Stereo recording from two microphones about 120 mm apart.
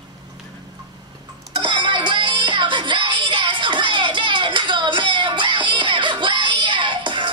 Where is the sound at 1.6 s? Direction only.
40° right (ahead or behind).